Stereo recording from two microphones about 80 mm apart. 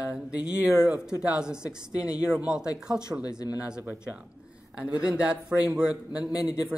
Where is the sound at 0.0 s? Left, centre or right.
Centre.